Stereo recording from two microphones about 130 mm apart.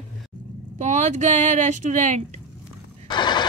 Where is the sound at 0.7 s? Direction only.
65° right (ahead or behind).